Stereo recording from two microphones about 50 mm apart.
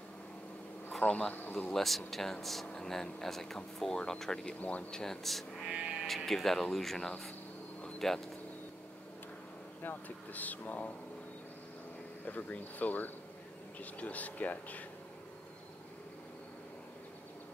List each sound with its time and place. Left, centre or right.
0.9 s speech: left
1.7 s speech: centre
4.6 s speech: left
4.9 s speech: centre
5.7 s vehicle: centre
6.0 s speech: centre
9.8 s speech: left
12.3 s speech: left